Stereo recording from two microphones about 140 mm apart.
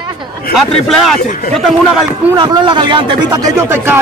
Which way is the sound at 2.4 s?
35° right (ahead or behind).